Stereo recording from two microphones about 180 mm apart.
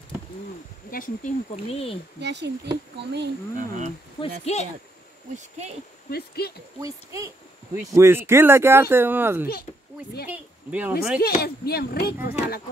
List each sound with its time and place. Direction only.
0.9 s speech: 45° left (ahead or behind)
2.1 s speech: 70° right (ahead or behind)
3.5 s speech: 45° right (ahead or behind)
4.2 s speech: 35° left (ahead or behind)
5.3 s speech: 40° right (ahead or behind)
6.0 s speech: 60° left (ahead or behind)
6.8 s speech: 20° right (ahead or behind)
11.1 s speech: 55° left (ahead or behind)